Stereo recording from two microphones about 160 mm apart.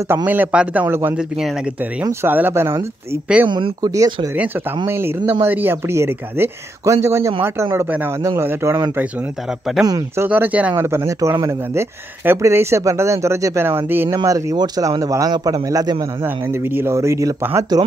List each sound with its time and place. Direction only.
0.1 s speech: 10° right (ahead or behind)
3.4 s speech: 30° right (ahead or behind)